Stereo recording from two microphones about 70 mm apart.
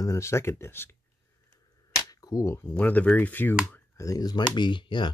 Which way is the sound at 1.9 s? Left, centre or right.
Left.